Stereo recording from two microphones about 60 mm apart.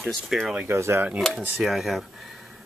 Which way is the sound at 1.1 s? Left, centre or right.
Centre.